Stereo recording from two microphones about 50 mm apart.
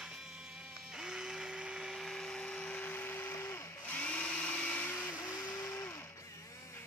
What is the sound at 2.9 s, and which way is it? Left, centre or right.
Blender, left.